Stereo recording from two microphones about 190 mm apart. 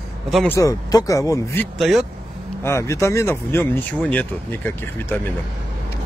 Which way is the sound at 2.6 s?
15° left (ahead or behind).